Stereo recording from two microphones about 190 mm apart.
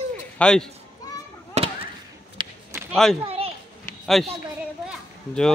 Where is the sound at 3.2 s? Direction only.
30° right (ahead or behind).